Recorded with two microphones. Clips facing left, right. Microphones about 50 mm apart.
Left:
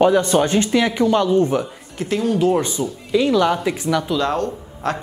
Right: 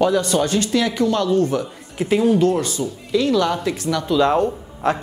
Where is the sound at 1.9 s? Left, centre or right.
Centre.